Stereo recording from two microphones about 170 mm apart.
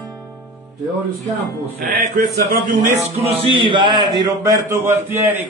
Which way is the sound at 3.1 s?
35° right (ahead or behind).